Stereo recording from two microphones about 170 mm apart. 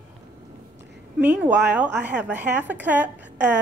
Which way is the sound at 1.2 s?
10° right (ahead or behind).